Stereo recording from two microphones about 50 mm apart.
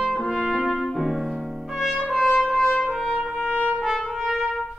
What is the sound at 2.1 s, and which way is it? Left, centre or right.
Trumpet, centre.